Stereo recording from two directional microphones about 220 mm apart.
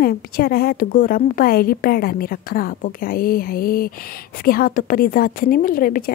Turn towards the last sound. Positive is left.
turn(degrees=40)  # may be behind; listen again after turning